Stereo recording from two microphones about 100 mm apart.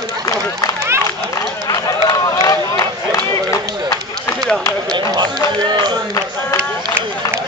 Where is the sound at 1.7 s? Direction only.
35° left (ahead or behind).